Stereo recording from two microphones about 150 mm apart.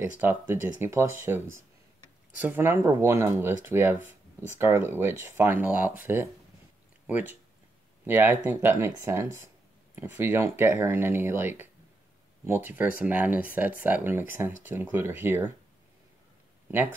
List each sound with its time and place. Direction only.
0.0 s speech: 15° right (ahead or behind)